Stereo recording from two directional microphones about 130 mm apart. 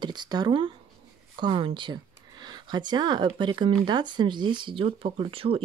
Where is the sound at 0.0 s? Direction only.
35° right (ahead or behind).